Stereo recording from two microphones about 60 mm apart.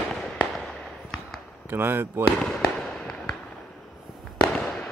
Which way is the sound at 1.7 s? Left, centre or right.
Right.